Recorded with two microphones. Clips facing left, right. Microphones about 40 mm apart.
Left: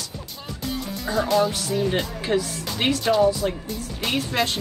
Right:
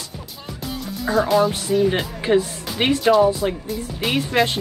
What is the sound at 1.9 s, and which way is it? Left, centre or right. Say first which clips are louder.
Speech: right 4 dB; centre.